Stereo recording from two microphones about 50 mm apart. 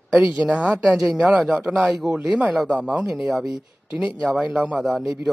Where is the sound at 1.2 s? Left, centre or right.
Centre.